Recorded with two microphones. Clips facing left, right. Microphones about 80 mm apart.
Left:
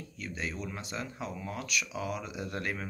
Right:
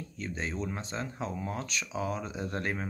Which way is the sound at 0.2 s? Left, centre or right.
Right.